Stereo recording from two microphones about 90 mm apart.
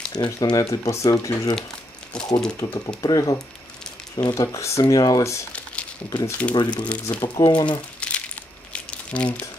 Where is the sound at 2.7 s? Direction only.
45° left (ahead or behind).